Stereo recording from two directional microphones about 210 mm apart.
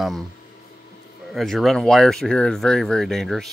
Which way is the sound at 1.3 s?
Centre (ahead or behind).